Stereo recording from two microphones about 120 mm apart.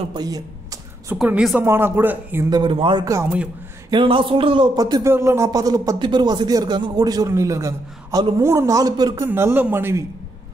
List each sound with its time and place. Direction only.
0.1 s a sound: 30° right (ahead or behind)
1.1 s a woman's voice: 5° right (ahead or behind)
1.6 s speech: 20° right (ahead or behind)
2.5 s speech: 40° right (ahead or behind)
3.9 s a sound: 45° right (ahead or behind)
4.7 s speech: 35° right (ahead or behind)
5.0 s speech: 20° right (ahead or behind)
9.2 s speech: 20° right (ahead or behind)